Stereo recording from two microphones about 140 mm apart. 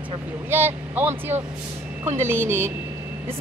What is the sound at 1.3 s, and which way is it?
Speech, 50° right (ahead or behind).